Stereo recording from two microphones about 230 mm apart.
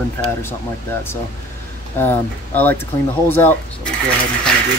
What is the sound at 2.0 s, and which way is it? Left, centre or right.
Speech, centre.